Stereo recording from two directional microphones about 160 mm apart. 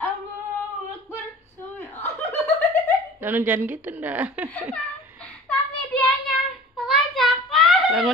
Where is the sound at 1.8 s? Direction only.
15° left (ahead or behind).